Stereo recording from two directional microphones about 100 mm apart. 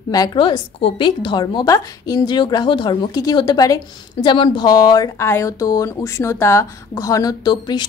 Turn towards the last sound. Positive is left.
turn(degrees=45)  # may be behind; listen again after turning